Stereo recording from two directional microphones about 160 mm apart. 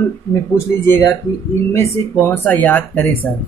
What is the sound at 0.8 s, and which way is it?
Speech, 15° left (ahead or behind).